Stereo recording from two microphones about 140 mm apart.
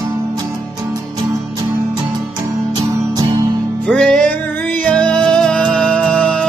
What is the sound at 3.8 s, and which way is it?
Music, 5° left (ahead or behind).